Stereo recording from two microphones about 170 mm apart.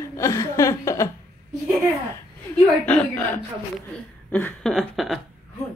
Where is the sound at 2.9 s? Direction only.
10° left (ahead or behind).